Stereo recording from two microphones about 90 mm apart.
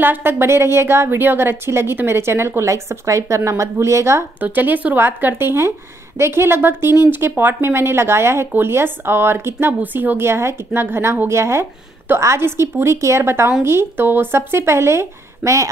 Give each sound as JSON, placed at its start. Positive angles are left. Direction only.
{"t": 0.0, "sound": "speech", "side_deg": -25}
{"t": 4.4, "sound": "a woman's voice", "side_deg": -20}